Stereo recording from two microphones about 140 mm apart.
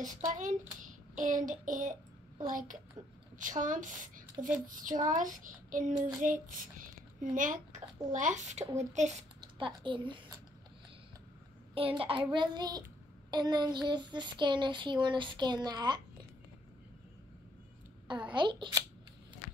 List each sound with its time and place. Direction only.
0.0 s a child's voice: 65° right (ahead or behind)
4.6 s child singing: 70° right (ahead or behind)
6.2 s speech: 75° right (ahead or behind); by 9.2 s 55° right (ahead or behind)
9.4 s a child's voice: 35° right (ahead or behind)
11.7 s speech: 40° right (ahead or behind)
18.3 s speech: 35° right (ahead or behind)